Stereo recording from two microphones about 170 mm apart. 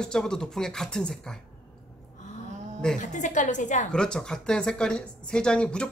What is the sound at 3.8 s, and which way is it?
Speech, 5° left (ahead or behind).